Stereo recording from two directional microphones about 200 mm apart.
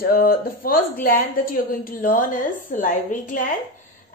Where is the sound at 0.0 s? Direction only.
45° left (ahead or behind).